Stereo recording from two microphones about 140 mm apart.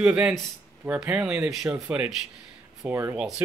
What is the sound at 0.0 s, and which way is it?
Speech, 10° right (ahead or behind).